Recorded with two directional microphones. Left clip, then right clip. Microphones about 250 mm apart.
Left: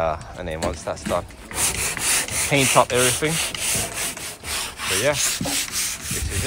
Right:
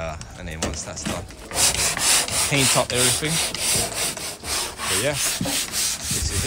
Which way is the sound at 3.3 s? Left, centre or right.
Right.